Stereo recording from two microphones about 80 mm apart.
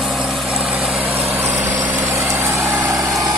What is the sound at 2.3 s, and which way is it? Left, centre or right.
Vehicle, right.